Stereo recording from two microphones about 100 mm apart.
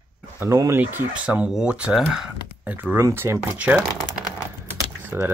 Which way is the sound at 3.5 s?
15° right (ahead or behind).